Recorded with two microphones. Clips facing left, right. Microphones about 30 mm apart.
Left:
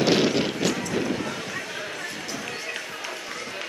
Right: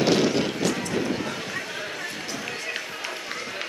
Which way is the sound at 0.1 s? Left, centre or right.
Centre.